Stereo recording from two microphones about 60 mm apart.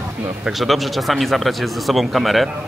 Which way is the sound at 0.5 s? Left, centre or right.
Centre.